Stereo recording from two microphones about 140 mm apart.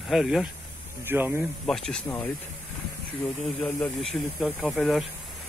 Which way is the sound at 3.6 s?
5° left (ahead or behind).